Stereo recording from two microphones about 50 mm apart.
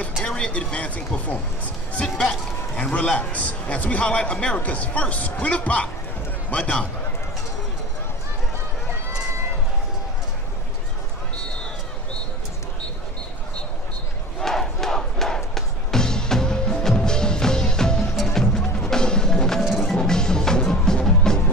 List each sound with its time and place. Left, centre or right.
0.5 s a man's voice: left
2.2 s speech: centre
3.2 s a man's voice: left
14.4 s crowd: centre
18.1 s music: centre